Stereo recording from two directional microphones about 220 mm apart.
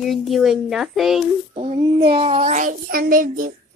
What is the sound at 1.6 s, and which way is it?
A child's voice, 25° right (ahead or behind).